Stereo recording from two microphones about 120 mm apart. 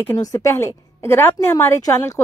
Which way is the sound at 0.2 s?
25° left (ahead or behind).